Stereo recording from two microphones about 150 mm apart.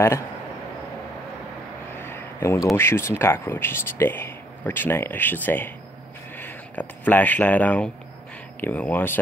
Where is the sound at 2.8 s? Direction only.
15° left (ahead or behind).